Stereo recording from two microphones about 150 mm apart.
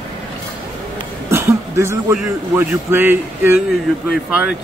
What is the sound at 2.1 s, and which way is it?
Speech, 10° right (ahead or behind).